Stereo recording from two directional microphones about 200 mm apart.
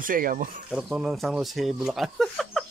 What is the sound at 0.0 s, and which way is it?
Speech, 45° right (ahead or behind).